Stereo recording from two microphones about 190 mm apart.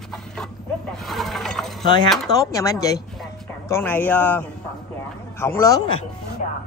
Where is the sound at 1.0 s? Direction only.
Centre (ahead or behind).